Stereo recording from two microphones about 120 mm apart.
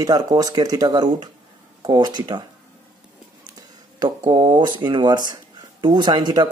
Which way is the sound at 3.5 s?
35° right (ahead or behind).